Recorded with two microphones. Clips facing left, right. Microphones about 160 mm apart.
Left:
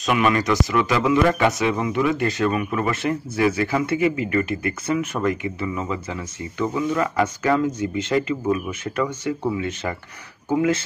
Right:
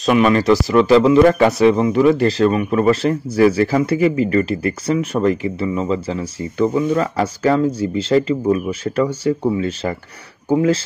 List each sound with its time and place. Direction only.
0.0 s a man's voice: 30° right (ahead or behind)